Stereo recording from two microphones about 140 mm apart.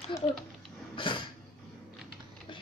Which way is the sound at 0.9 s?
35° left (ahead or behind).